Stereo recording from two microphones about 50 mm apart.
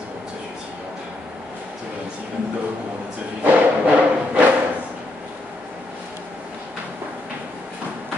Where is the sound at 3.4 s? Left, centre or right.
Right.